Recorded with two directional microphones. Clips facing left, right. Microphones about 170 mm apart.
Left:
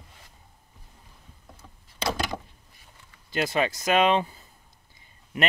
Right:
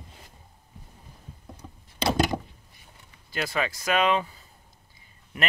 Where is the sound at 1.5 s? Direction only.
20° right (ahead or behind).